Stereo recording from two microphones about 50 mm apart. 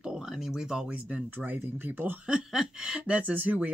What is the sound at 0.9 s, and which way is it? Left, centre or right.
Speech, right.